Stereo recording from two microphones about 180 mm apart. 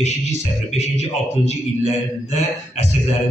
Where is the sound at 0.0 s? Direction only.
40° left (ahead or behind).